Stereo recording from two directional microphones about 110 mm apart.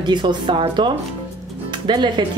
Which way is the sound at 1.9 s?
45° right (ahead or behind).